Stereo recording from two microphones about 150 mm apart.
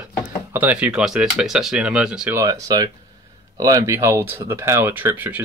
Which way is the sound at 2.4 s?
25° right (ahead or behind).